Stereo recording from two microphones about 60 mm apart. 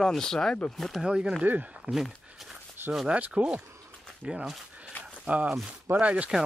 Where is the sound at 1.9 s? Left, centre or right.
Centre.